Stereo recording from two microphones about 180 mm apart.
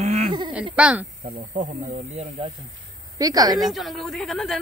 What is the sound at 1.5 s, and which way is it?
Speech, 40° right (ahead or behind).